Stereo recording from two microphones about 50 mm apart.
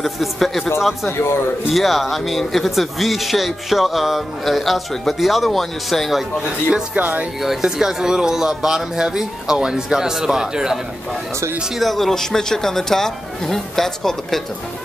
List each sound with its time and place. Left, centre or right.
0.0 s speech: centre
1.0 s a man's voice: left
1.7 s speech: centre
7.0 s speech: right
7.4 s speech: centre
11.7 s speech: centre